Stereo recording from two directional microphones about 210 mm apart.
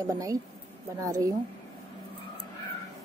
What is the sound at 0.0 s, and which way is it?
Speech, 15° right (ahead or behind).